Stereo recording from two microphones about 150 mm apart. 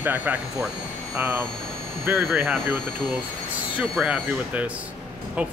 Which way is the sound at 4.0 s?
10° right (ahead or behind).